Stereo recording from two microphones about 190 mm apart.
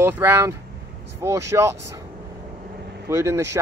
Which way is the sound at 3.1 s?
15° right (ahead or behind).